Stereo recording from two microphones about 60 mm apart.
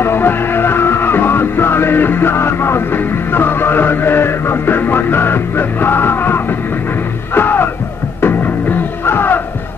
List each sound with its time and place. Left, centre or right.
0.0 s music: left